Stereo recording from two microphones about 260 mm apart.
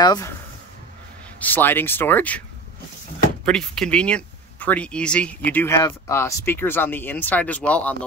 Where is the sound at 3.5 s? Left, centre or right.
Centre.